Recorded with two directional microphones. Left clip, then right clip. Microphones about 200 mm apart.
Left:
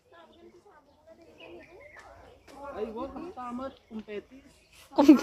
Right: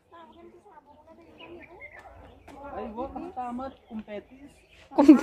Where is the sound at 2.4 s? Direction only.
55° right (ahead or behind).